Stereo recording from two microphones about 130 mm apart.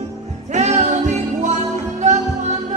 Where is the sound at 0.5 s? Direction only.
60° right (ahead or behind).